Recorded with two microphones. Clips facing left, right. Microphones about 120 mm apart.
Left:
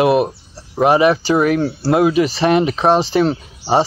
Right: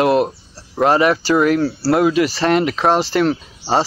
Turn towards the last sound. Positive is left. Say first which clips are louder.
# left 2 dB
turn(degrees=20)  # may be behind; listen again after turning